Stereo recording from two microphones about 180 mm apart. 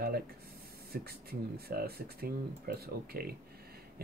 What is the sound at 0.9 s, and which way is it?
Speech, 60° right (ahead or behind).